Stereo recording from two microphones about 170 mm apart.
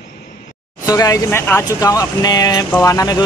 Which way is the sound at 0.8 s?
20° left (ahead or behind).